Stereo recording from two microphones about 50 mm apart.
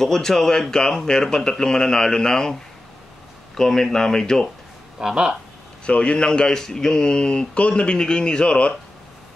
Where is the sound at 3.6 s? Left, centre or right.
Centre.